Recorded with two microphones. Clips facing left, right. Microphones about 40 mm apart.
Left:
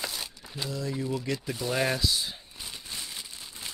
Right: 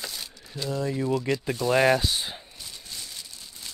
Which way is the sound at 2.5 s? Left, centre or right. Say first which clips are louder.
Left 1 dB; left.